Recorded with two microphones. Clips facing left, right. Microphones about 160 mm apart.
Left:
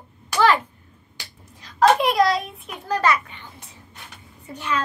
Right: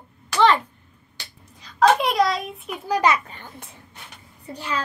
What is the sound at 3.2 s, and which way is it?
Babbling, 50° right (ahead or behind).